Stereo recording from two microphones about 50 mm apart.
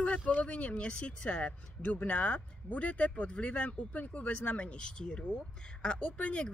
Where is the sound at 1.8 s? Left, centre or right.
Left.